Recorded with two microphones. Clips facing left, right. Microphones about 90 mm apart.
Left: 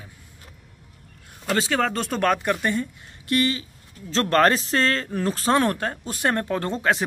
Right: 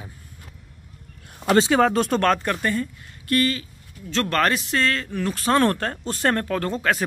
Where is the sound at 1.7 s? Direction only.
10° right (ahead or behind); by 3.6 s 20° left (ahead or behind).